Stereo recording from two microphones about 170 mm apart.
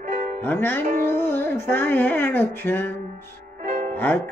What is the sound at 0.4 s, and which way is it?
Music, 10° left (ahead or behind).